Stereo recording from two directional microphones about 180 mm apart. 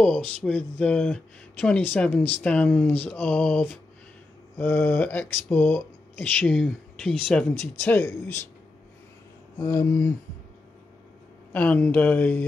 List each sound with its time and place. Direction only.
0.0 s speech: 5° left (ahead or behind)
9.6 s speech: 15° left (ahead or behind)
11.5 s speech: 10° left (ahead or behind)